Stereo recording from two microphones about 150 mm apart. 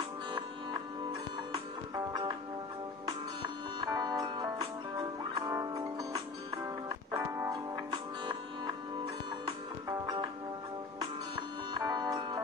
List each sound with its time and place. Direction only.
3.8 s music: 25° right (ahead or behind)
7.1 s music: 20° right (ahead or behind)
9.8 s music: 25° right (ahead or behind)